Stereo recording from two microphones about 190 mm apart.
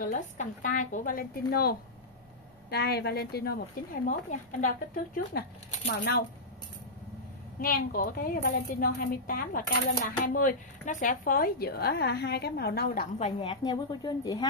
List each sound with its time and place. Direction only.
0.0 s a woman's voice: 45° left (ahead or behind)
4.0 s a woman's voice: 40° left (ahead or behind)
7.6 s a woman's voice: 50° left (ahead or behind)
13.2 s a woman's voice: 25° left (ahead or behind)